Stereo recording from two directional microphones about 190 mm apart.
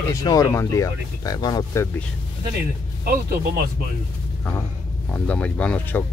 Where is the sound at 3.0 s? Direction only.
50° right (ahead or behind).